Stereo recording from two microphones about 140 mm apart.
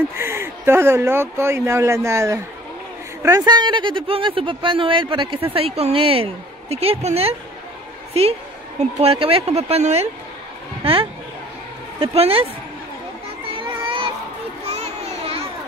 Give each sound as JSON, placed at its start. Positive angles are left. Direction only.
{"t": 0.2, "sound": "a woman's voice", "side_deg": -15}
{"t": 10.8, "sound": "a woman's voice", "side_deg": -40}
{"t": 13.4, "sound": "a sound", "side_deg": -40}
{"t": 14.7, "sound": "children playing", "side_deg": -50}